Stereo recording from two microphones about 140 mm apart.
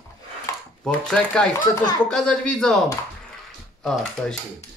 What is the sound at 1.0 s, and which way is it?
A woman's voice, 5° left (ahead or behind).